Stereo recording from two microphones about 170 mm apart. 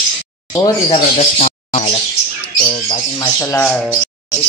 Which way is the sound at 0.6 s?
30° left (ahead or behind).